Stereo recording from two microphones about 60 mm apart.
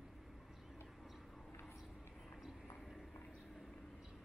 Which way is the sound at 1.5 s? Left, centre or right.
Left.